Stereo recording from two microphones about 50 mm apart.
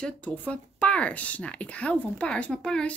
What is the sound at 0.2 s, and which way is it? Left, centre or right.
Speech, left.